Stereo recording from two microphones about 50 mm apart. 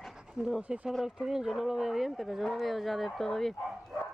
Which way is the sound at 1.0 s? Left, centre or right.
Centre.